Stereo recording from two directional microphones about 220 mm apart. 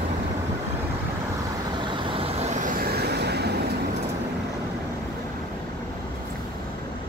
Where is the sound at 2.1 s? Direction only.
30° right (ahead or behind); by 3.5 s 50° right (ahead or behind).